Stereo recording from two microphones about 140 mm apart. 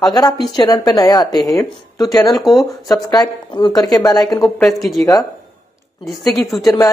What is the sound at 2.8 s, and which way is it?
A woman's voice, 30° left (ahead or behind).